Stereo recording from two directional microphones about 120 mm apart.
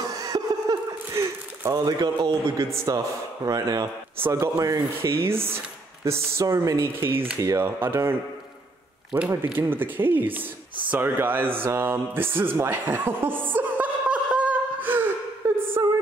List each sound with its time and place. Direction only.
0.0 s chuckle: 30° right (ahead or behind)
3.4 s speech: 30° right (ahead or behind)
9.3 s speech: 15° right (ahead or behind)
11.6 s chuckle: 20° right (ahead or behind)